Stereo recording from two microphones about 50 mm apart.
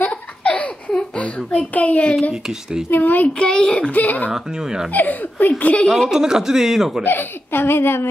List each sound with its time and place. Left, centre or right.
0.4 s a sound: left
2.9 s speech: left
3.3 s a child's voice: centre
3.9 s speech: left
4.3 s a man's voice: centre
4.9 s speech: left
5.9 s speech: centre
6.1 s a man's voice: centre
7.0 s speech: left